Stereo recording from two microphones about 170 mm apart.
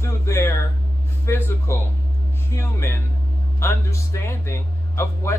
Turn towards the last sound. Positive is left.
turn(degrees=15)  # may be behind; listen again after turning